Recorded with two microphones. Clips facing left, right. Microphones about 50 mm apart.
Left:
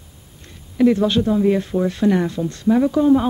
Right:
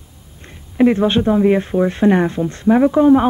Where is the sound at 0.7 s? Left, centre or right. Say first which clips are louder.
Right 2 dB; right.